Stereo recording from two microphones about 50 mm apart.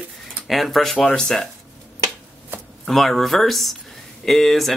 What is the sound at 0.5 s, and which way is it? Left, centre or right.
Speech, centre.